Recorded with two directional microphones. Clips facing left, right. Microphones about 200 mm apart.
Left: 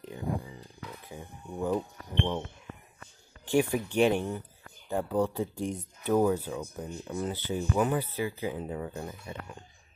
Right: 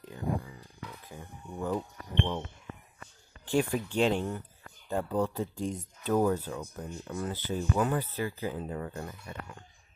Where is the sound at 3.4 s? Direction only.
15° left (ahead or behind).